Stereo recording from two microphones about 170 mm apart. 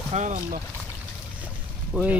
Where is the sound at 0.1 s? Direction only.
45° right (ahead or behind).